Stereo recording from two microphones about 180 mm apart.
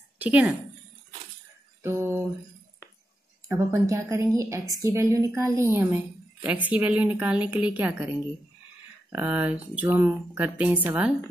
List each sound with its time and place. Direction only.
0.2 s a woman's voice: 10° right (ahead or behind)
1.8 s a sound: 15° right (ahead or behind)
3.4 s a woman's voice: 15° right (ahead or behind)
9.1 s a woman's voice: 10° right (ahead or behind)